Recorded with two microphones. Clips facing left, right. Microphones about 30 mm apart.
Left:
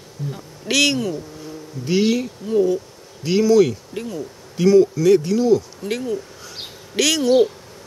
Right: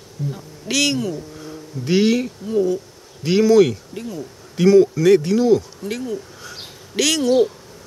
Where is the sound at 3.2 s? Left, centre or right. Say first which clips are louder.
Right 1 dB; right.